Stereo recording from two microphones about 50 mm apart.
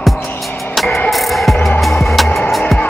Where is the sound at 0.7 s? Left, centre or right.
Centre.